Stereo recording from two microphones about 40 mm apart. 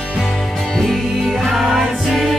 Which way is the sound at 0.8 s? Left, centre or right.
Centre.